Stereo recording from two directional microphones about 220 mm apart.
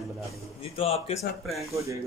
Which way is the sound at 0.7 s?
30° left (ahead or behind).